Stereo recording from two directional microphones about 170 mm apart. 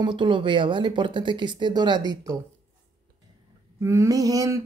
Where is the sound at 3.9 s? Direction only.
20° right (ahead or behind).